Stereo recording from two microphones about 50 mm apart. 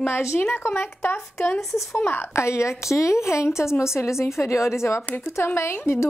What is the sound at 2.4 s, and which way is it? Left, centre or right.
A woman's voice, left.